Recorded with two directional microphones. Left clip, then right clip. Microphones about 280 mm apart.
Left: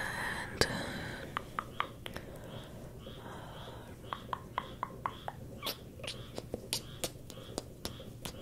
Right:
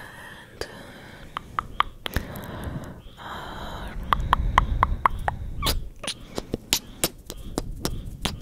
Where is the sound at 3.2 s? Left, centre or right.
Right.